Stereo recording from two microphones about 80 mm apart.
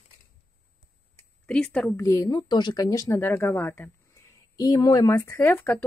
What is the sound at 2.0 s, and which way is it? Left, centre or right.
Speech, left.